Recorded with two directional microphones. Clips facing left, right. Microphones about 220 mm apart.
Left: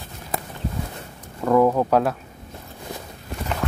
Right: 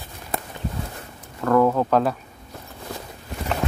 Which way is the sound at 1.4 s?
10° left (ahead or behind).